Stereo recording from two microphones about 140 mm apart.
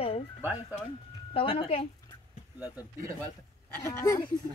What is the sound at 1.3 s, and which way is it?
Speech, 40° left (ahead or behind).